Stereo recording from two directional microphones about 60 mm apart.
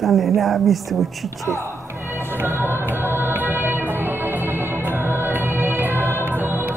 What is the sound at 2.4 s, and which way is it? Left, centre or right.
Music, right.